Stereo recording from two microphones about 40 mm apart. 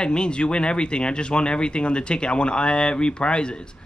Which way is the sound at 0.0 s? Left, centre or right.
Left.